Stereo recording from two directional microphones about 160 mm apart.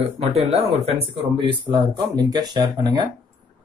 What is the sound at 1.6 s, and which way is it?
Speech, 25° right (ahead or behind).